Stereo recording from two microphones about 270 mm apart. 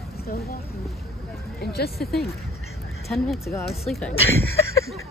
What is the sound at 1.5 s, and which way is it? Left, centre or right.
Speech, left.